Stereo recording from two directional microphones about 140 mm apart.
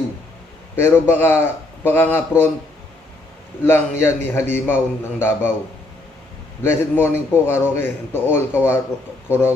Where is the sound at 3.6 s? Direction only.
15° left (ahead or behind).